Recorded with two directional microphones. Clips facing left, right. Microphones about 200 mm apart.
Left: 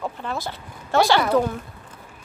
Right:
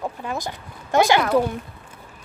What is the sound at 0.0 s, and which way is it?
Speech, 15° right (ahead or behind).